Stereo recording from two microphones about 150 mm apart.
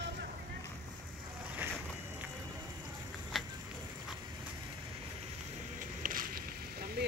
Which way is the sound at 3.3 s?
Centre (ahead or behind).